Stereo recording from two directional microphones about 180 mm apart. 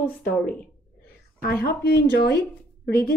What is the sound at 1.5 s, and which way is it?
Speech, 55° left (ahead or behind).